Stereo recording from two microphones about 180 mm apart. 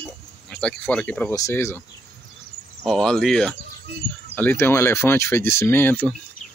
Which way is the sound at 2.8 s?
5° left (ahead or behind).